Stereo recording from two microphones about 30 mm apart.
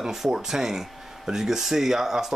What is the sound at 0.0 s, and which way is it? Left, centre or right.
Speech, centre.